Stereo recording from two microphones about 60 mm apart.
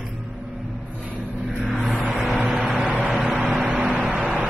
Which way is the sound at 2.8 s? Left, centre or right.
Right.